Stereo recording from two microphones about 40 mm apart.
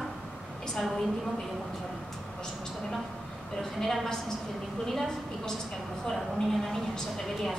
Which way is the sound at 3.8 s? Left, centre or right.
Centre.